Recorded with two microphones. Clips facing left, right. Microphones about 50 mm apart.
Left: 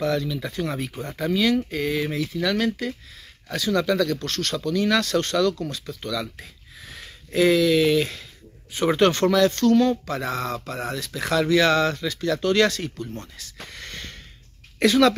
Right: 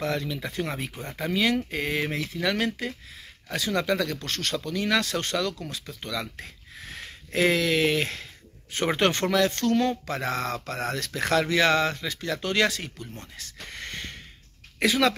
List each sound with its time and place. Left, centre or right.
0.0 s speech: right
8.9 s speech: right
10.7 s speech: right
11.5 s speech: right
13.7 s a sound: right
14.8 s speech: centre